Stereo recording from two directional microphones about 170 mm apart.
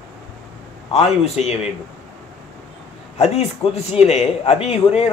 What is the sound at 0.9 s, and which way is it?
Speech, 40° left (ahead or behind).